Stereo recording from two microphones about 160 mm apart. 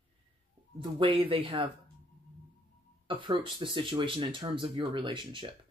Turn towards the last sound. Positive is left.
turn(degrees=-30)  # may be behind; listen again after turning